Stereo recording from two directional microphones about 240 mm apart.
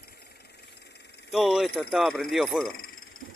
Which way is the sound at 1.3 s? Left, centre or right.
Centre.